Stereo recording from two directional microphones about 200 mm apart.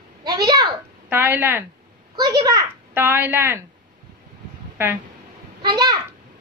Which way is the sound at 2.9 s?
10° right (ahead or behind).